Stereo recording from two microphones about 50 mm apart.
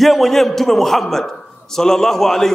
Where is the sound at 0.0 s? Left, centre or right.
Centre.